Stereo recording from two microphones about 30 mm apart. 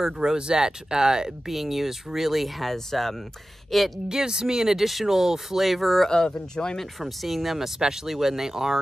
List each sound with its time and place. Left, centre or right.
0.0 s speech: centre
1.5 s speech: centre
2.6 s speech: centre
4.1 s speech: right
4.7 s speech: centre
5.1 s speech: centre
5.6 s speech: centre
6.0 s speech: left
6.8 s speech: centre
7.8 s speech: centre